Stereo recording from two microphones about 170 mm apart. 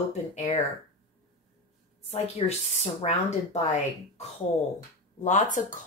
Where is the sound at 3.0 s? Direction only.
40° left (ahead or behind).